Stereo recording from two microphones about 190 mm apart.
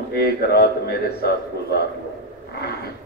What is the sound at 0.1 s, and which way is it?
A man's voice, 55° left (ahead or behind).